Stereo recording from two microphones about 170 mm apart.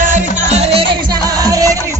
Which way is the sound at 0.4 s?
40° right (ahead or behind).